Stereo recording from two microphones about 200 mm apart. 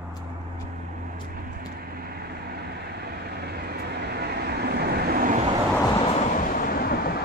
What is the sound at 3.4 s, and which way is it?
Vehicle, 55° right (ahead or behind).